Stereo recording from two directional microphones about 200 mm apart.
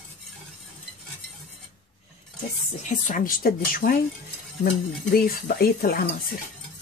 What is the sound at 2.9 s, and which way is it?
Speech, 40° left (ahead or behind).